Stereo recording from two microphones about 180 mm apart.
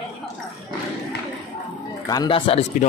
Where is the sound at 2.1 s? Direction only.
25° left (ahead or behind).